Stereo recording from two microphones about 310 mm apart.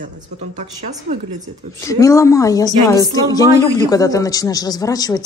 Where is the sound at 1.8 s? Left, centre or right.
Centre.